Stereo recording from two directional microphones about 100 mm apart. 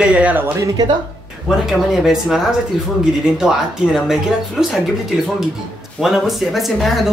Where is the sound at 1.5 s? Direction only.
5° right (ahead or behind).